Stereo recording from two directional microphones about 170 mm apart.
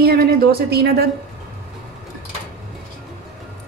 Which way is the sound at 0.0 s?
65° right (ahead or behind).